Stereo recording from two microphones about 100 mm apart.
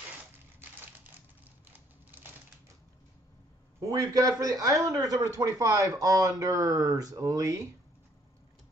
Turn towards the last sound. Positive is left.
turn(degrees=-35)  # may be behind; listen again after turning